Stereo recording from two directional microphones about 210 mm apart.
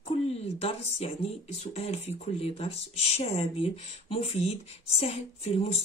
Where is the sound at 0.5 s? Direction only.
30° left (ahead or behind).